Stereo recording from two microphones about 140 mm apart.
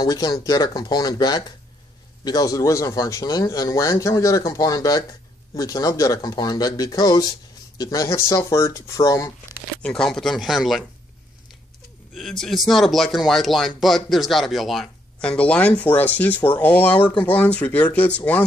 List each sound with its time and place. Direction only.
0.0 s speech: 25° left (ahead or behind)
9.8 s speech: 5° left (ahead or behind)
12.1 s speech: centre (ahead or behind)